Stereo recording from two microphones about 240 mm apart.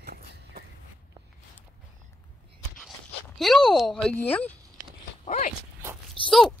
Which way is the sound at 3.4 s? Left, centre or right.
Centre.